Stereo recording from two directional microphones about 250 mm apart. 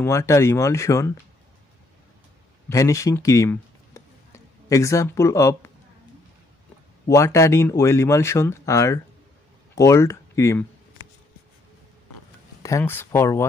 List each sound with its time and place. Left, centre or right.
0.0 s speech: centre
2.7 s speech: centre
7.1 s speech: centre
12.6 s speech: centre